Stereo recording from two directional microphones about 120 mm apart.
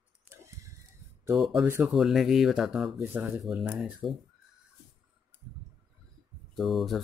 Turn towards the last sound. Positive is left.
turn(degrees=0)  # may be behind; listen again after turning